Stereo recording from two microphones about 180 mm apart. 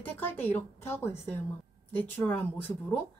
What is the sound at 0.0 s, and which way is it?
A woman's voice, 10° left (ahead or behind).